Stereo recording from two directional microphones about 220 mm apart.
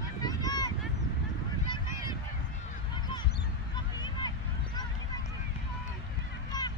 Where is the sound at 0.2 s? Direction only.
15° left (ahead or behind).